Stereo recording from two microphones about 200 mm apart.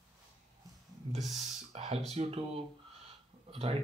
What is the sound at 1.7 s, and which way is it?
Speech, 30° right (ahead or behind).